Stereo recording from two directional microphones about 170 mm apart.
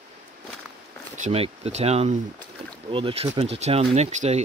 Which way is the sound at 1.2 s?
35° right (ahead or behind).